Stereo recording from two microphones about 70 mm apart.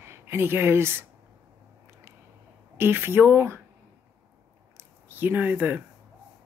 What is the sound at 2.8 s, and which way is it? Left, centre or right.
Speech, right.